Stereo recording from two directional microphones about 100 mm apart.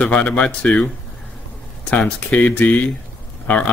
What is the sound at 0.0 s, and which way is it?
Speech, 10° left (ahead or behind).